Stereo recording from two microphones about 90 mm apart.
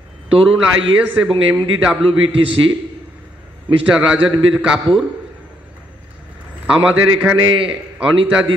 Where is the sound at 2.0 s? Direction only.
85° right.